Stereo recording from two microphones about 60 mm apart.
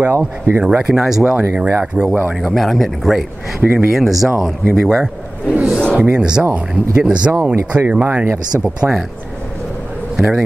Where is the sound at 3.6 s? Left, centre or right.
Right.